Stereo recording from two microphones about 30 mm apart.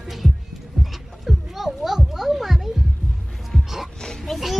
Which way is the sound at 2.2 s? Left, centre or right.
Centre.